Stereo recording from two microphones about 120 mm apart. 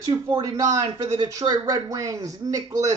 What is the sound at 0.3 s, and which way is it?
Speech, 30° right (ahead or behind).